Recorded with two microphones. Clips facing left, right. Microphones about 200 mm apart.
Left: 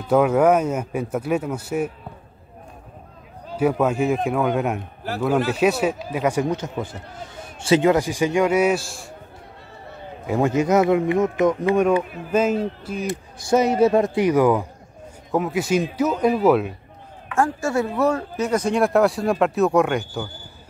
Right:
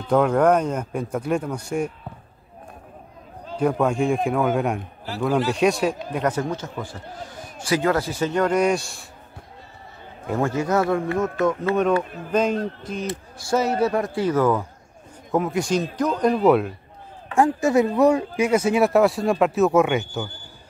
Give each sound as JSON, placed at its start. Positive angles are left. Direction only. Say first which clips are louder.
{"t": 0.0, "sound": "speech", "louder": "left 1 dB", "side_deg": 5}
{"t": 3.4, "sound": "speech", "louder": "left 1 dB", "side_deg": 5}
{"t": 10.2, "sound": "speech", "louder": "left 3 dB", "side_deg": 15}
{"t": 13.4, "sound": "speech", "louder": "left 4 dB", "side_deg": 20}
{"t": 15.3, "sound": "speech", "louder": "left 1 dB", "side_deg": 0}
{"t": 17.4, "sound": "speech", "louder": "right 3 dB", "side_deg": -20}